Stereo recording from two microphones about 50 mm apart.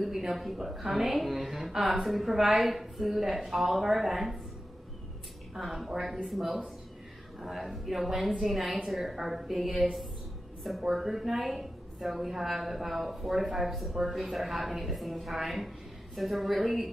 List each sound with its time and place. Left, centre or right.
0.0 s a woman's voice: centre
5.5 s a woman's voice: centre